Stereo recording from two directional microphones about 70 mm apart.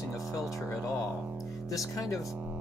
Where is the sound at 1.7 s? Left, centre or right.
Left.